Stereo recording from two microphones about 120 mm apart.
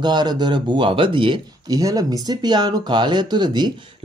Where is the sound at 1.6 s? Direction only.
30° right (ahead or behind).